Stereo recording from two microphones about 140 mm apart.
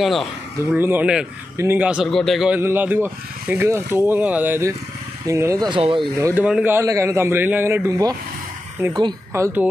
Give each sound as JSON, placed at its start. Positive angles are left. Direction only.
{"t": 0.0, "sound": "speech", "side_deg": 0}
{"t": 0.7, "sound": "speech", "side_deg": -15}
{"t": 2.0, "sound": "speech", "side_deg": 0}
{"t": 2.6, "sound": "speech", "side_deg": -15}
{"t": 5.7, "sound": "speech", "side_deg": -40}
{"t": 6.1, "sound": "speech", "side_deg": -20}
{"t": 9.3, "sound": "speech", "side_deg": -15}